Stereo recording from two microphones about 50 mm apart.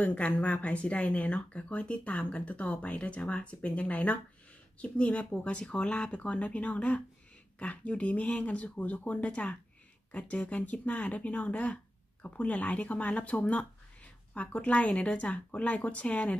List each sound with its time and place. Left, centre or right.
0.0 s speech: left